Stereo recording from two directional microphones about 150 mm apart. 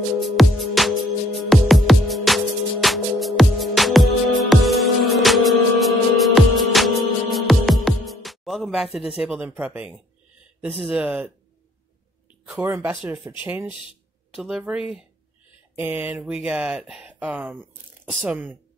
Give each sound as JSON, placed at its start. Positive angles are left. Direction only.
{"t": 0.2, "sound": "music", "side_deg": 0}
{"t": 10.6, "sound": "speech", "side_deg": 0}
{"t": 12.6, "sound": "speech", "side_deg": -15}